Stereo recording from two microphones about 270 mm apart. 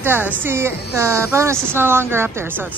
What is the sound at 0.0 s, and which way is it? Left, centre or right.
A woman's voice, centre.